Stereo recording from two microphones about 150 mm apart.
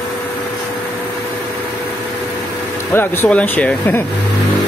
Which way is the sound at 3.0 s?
10° left (ahead or behind).